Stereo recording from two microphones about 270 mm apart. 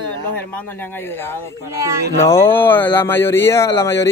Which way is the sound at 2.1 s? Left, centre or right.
Centre.